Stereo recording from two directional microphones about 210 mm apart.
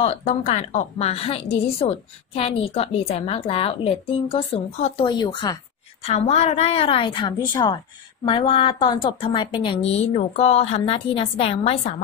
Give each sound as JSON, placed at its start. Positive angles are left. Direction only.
{"t": 0.0, "sound": "a woman's voice", "side_deg": 30}
{"t": 6.0, "sound": "a woman's voice", "side_deg": 30}